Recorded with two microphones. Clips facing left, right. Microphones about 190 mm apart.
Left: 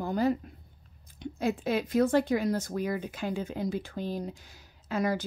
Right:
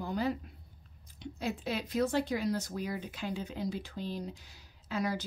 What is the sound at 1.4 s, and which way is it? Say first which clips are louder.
Speech: left 7 dB; 50° left (ahead or behind).